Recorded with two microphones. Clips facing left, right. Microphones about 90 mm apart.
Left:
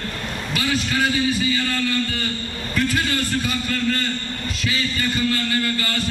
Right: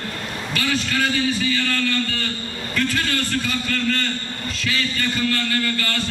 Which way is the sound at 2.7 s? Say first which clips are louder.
Left 1 dB; 15° left (ahead or behind).